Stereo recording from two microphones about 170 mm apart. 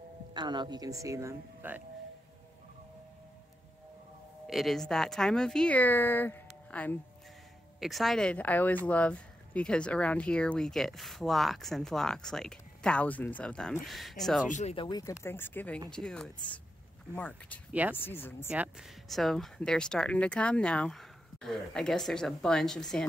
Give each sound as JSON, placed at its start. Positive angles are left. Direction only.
{"t": 0.3, "sound": "speech", "side_deg": -25}
{"t": 4.5, "sound": "speech", "side_deg": 0}
{"t": 14.5, "sound": "speech", "side_deg": 45}
{"t": 14.8, "sound": "speech", "side_deg": 25}
{"t": 15.2, "sound": "speech", "side_deg": 15}
{"t": 18.5, "sound": "speech", "side_deg": -5}